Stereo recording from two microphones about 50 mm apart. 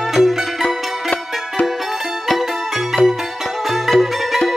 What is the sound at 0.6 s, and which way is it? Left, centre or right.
Music, left.